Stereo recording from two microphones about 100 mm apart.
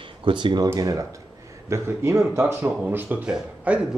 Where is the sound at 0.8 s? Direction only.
35° right (ahead or behind); by 3.2 s 20° right (ahead or behind).